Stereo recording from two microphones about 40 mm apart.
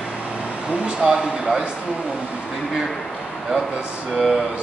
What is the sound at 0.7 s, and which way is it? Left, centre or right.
Speech, right.